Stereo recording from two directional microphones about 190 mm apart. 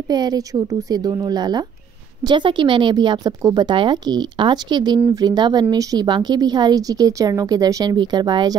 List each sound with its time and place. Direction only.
0.1 s speech: 20° right (ahead or behind)